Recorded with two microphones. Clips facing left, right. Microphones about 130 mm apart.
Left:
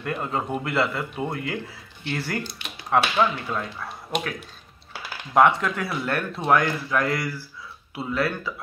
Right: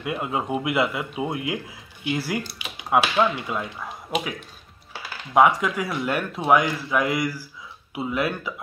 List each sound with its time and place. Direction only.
0.0 s speech: 10° right (ahead or behind)
5.3 s speech: 10° right (ahead or behind)